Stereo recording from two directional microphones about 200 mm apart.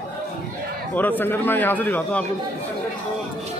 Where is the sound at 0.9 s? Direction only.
10° left (ahead or behind).